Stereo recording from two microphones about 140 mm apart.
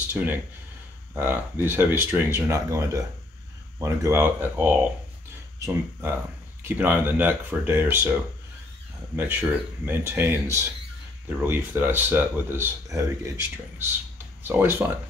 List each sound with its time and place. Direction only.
0.1 s speech: 10° right (ahead or behind)
6.6 s speech: 15° right (ahead or behind)